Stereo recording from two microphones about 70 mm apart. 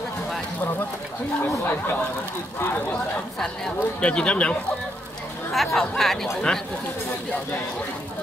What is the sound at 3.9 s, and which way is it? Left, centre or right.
Speech, centre.